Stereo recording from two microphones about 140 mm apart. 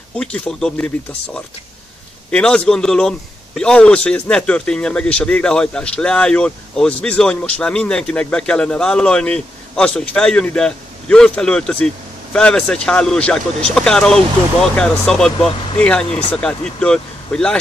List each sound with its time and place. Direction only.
0.2 s a man's voice: 10° left (ahead or behind)
15.3 s speech: 40° left (ahead or behind)
15.8 s a man's voice: 10° left (ahead or behind)